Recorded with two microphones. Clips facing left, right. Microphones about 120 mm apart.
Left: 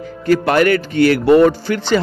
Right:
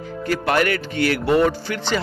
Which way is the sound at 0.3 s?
45° left (ahead or behind).